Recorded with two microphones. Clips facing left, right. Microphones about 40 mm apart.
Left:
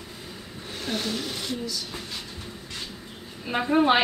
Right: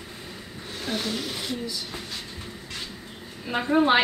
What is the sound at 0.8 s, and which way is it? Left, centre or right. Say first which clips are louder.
Speech: even; centre.